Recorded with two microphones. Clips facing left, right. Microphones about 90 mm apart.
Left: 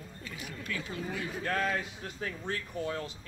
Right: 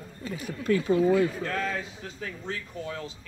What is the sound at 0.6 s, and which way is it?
Speech, 35° right (ahead or behind).